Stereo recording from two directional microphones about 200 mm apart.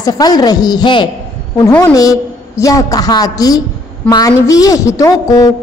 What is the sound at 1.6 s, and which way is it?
A woman's voice, 10° left (ahead or behind).